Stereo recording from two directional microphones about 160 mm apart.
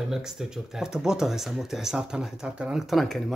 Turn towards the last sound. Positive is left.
turn(degrees=0)  # may be behind; listen again after turning